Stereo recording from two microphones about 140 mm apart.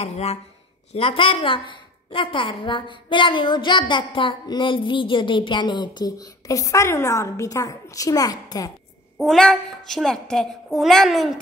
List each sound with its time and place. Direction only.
0.0 s a woman's voice: 50° left (ahead or behind); by 8.7 s 25° left (ahead or behind)
9.2 s a child's voice: 5° left (ahead or behind)